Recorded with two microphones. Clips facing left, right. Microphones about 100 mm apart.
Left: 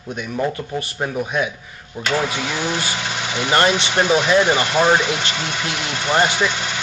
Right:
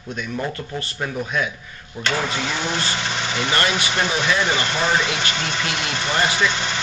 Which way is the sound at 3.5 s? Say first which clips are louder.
Left 6 dB; 30° left (ahead or behind).